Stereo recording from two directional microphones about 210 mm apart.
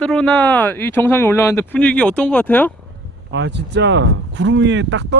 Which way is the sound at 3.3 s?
55° right (ahead or behind).